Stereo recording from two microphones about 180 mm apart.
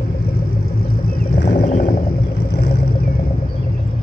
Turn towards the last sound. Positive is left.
turn(degrees=60)  # may be behind; listen again after turning